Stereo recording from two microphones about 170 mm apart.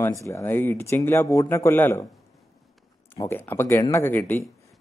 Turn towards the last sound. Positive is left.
turn(degrees=10)  # may be behind; listen again after turning